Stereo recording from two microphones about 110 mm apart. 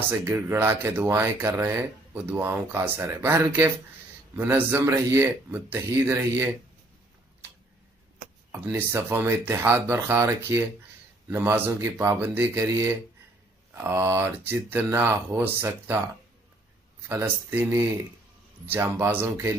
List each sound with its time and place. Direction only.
0.2 s speech: 20° right (ahead or behind)
8.8 s speech: 20° right (ahead or behind)
17.1 s speech: 25° right (ahead or behind)